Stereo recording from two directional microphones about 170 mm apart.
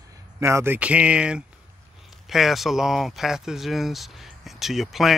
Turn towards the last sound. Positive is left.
turn(degrees=0)  # may be behind; listen again after turning